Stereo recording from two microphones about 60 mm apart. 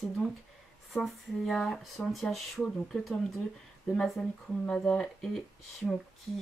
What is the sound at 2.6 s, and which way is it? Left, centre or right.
Speech, centre.